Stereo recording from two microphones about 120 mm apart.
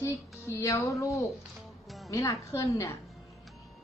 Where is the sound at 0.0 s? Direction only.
25° left (ahead or behind).